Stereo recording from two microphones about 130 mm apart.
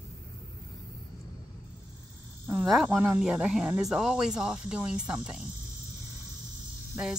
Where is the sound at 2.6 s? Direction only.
Centre (ahead or behind).